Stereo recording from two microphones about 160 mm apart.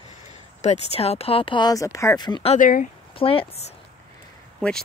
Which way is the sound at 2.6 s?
55° left (ahead or behind).